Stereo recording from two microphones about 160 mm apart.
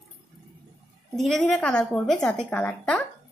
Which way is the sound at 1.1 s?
Centre (ahead or behind).